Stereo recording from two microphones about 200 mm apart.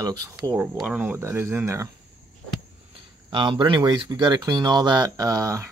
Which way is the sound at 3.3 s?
25° right (ahead or behind).